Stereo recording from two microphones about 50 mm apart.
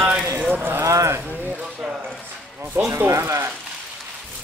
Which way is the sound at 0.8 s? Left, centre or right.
Right.